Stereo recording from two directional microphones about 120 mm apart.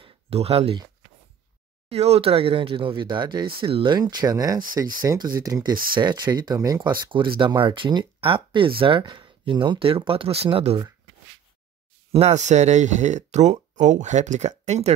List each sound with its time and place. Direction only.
0.0 s a sound: 55° right (ahead or behind)
1.9 s speech: 60° right (ahead or behind)
12.1 s speech: 65° right (ahead or behind)